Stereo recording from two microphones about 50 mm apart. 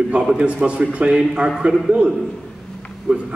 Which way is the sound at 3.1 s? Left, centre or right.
Centre.